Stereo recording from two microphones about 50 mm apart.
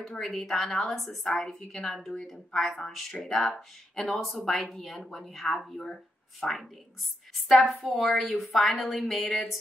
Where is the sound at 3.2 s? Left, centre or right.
Centre.